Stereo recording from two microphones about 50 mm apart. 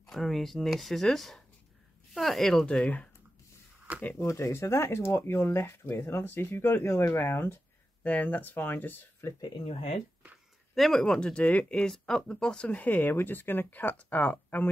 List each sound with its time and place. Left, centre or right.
0.0 s speech: centre
2.6 s speech: centre
3.9 s speech: right
4.3 s speech: left
6.7 s speech: left
8.0 s speech: left
9.2 s speech: left
10.7 s speech: centre
11.1 s speech: left
11.8 s speech: centre
12.6 s speech: left